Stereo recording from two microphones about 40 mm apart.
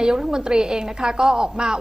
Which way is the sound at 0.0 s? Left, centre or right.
Centre.